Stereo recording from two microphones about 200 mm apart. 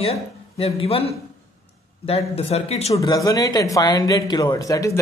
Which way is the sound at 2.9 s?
20° left (ahead or behind).